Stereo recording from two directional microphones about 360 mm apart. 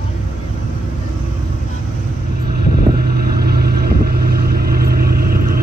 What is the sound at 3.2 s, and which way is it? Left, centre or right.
Vehicle, right.